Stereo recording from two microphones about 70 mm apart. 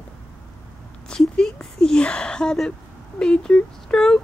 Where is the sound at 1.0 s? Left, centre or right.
Centre.